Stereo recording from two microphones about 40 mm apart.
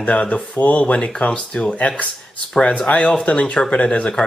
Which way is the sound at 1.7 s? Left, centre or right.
Left.